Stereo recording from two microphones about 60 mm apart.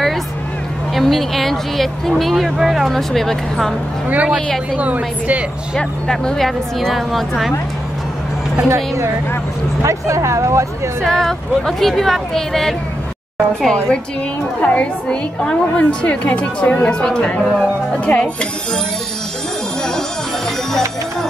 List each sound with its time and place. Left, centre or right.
0.9 s speech: centre
4.1 s a woman's voice: right
5.8 s speech: centre
8.6 s a woman's voice: right
11.0 s speech: centre
14.6 s a woman's voice: left